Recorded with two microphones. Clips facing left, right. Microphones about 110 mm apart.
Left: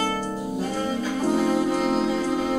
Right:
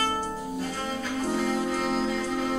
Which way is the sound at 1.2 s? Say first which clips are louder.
Left 6 dB; 15° left (ahead or behind).